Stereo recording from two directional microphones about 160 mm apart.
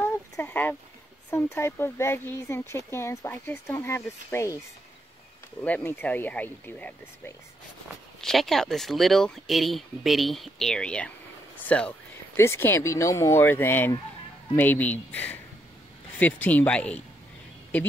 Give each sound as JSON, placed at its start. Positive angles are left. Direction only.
{"t": 0.4, "sound": "speech", "side_deg": 10}
{"t": 5.6, "sound": "speech", "side_deg": 10}
{"t": 8.2, "sound": "speech", "side_deg": 0}